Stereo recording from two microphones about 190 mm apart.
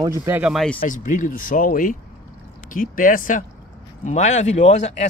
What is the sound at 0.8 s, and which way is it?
Speech, 40° left (ahead or behind).